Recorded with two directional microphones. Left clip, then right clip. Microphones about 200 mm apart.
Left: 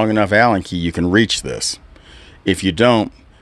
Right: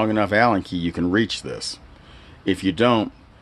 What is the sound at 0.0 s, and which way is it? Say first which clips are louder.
Speech: left 5 dB; 35° left (ahead or behind).